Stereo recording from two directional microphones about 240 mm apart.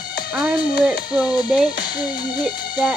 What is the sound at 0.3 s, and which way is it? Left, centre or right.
Music, centre.